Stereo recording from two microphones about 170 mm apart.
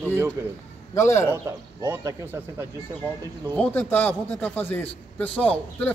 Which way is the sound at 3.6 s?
10° left (ahead or behind).